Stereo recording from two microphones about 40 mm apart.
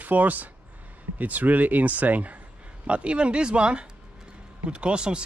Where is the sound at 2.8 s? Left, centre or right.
Right.